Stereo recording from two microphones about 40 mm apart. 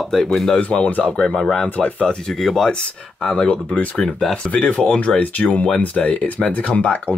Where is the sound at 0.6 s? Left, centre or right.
Left.